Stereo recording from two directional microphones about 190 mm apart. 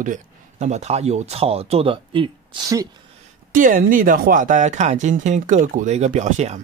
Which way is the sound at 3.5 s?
45° right (ahead or behind).